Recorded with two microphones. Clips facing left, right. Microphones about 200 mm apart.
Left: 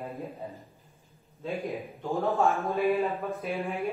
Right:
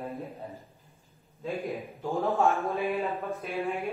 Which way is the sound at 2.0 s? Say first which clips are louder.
Even; centre (ahead or behind).